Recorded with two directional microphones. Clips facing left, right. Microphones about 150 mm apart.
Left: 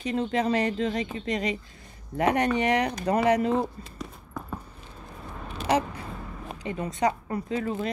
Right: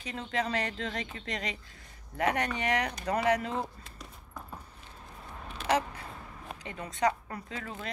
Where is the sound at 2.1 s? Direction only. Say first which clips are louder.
Left 7 dB; 25° left (ahead or behind).